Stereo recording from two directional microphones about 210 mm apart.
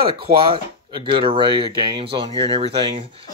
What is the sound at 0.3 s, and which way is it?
Speech, 25° right (ahead or behind).